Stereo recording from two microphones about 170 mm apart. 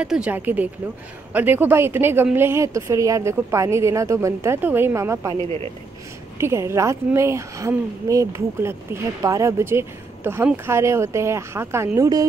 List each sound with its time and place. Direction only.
0.0 s a woman's voice: 5° right (ahead or behind)
6.3 s a woman's voice: 15° right (ahead or behind)